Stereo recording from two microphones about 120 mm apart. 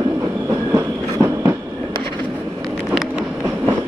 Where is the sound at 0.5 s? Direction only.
25° right (ahead or behind).